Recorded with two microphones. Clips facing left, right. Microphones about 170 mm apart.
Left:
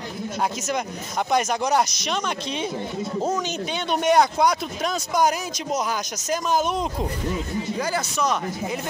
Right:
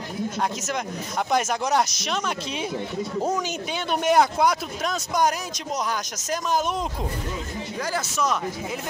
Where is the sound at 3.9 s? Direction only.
5° right (ahead or behind).